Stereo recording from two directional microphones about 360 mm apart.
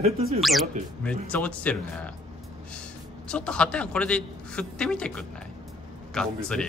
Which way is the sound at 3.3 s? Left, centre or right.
Centre.